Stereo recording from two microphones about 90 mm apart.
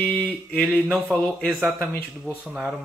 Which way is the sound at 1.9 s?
20° left (ahead or behind).